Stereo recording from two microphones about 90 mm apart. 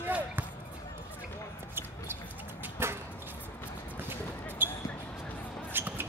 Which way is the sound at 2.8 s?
25° right (ahead or behind).